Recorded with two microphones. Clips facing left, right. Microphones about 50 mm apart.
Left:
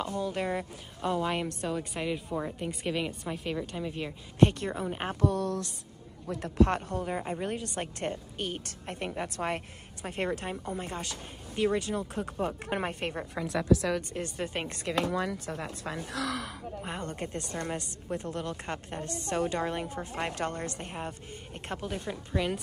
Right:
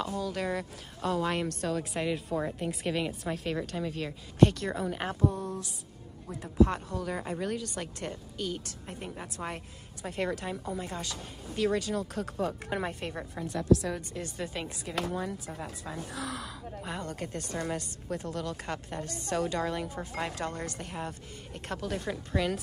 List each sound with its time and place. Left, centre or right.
0.0 s speech: left
1.8 s a woman's voice: centre
3.9 s speech: left
5.2 s speech: left
6.3 s speech: left
7.2 s speech: left
7.5 s a woman's voice: left
10.0 s a woman's voice: left
13.3 s a woman's voice: left
14.4 s a woman's voice: left
14.9 s speech: left
16.8 s a woman's voice: left
22.1 s speech: centre